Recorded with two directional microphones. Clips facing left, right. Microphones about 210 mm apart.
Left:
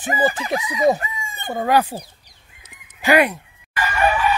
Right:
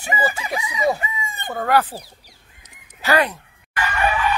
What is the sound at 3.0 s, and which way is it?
Speech, 10° left (ahead or behind).